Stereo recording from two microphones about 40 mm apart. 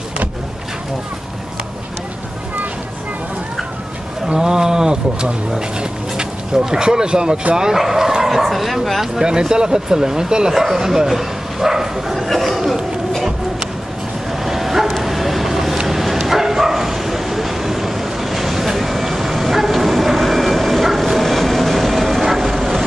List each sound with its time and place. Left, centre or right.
4.4 s speech: centre
9.2 s speech: centre
12.2 s speech: centre
14.4 s bow-wow: centre